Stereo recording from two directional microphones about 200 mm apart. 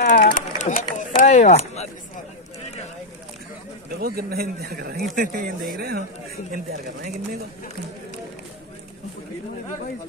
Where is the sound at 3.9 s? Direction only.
50° right (ahead or behind).